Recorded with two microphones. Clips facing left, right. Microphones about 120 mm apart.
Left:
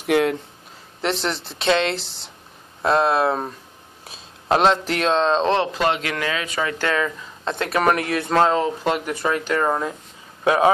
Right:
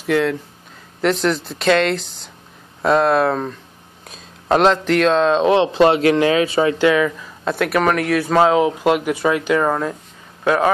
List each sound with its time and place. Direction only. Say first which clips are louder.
0.0 s speech: right 1 dB; 20° left (ahead or behind)
1.2 s speech: right 5 dB; centre (ahead or behind)
3.3 s speech: right 2 dB; 25° left (ahead or behind)
4.1 s speech: right 3 dB; centre (ahead or behind)
5.7 s speech: right 9 dB; 35° right (ahead or behind)
6.8 s speech: right 7 dB; 10° right (ahead or behind)
7.7 s speech: right 2 dB; 5° left (ahead or behind)
10.4 s speech: even; 20° left (ahead or behind)